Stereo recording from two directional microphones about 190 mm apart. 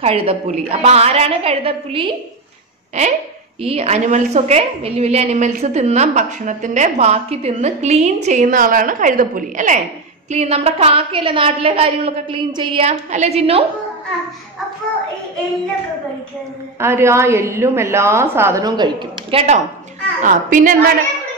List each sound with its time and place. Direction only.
0.0 s a woman's voice: 30° right (ahead or behind)
3.6 s a woman's voice: 35° right (ahead or behind)
12.8 s a woman's voice: 35° right (ahead or behind)
16.8 s a woman's voice: 15° right (ahead or behind)
19.3 s a woman's voice: 35° right (ahead or behind)